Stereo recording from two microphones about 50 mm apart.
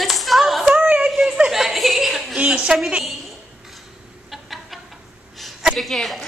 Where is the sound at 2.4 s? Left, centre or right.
Centre.